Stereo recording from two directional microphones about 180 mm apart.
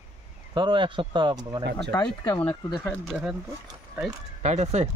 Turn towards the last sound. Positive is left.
turn(degrees=-40)  # may be behind; listen again after turning